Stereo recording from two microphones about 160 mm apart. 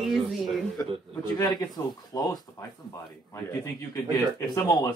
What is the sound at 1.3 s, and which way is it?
Speech, 25° left (ahead or behind).